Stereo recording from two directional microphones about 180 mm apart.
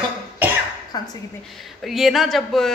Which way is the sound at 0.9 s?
20° left (ahead or behind).